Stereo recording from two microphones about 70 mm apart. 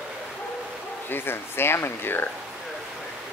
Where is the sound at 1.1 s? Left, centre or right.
Left.